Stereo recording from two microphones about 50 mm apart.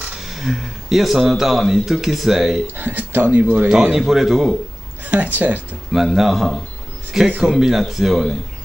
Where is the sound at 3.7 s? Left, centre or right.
Centre.